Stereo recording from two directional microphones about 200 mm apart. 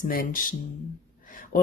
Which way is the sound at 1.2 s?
45° left (ahead or behind).